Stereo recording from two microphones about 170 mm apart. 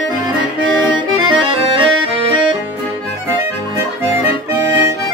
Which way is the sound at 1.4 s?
30° right (ahead or behind).